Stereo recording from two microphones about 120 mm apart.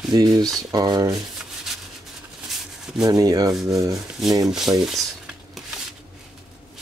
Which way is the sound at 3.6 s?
30° right (ahead or behind).